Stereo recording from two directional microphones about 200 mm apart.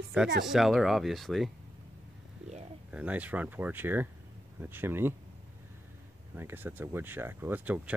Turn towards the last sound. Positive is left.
turn(degrees=-10)  # may be behind; listen again after turning